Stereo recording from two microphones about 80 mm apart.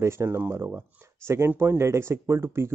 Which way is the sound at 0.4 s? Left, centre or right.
Right.